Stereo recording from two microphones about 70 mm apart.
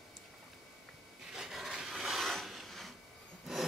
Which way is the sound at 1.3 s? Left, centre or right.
Centre.